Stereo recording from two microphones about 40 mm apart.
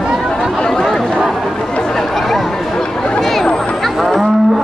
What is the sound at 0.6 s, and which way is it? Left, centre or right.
Speech, centre.